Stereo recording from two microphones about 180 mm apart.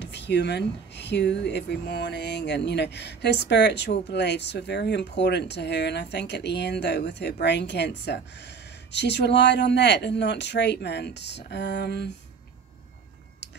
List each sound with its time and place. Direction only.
0.0 s speech: 70° left (ahead or behind)